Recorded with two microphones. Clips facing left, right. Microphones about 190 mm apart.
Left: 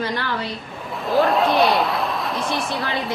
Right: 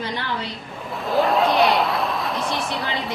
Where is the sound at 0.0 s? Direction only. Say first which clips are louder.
Left 3 dB; 20° right (ahead or behind).